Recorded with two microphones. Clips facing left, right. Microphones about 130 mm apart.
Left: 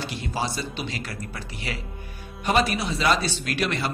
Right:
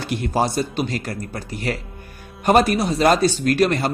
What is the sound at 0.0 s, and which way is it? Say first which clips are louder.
A man's voice: right 8 dB; 55° right (ahead or behind).